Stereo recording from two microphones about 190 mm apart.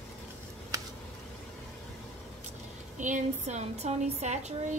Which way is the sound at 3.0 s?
40° right (ahead or behind).